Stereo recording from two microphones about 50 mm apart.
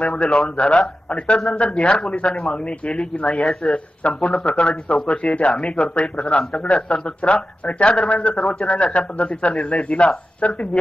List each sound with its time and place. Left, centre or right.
0.0 s a man's voice: left